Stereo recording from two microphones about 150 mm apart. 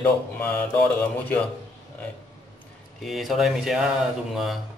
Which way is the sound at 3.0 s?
Centre (ahead or behind).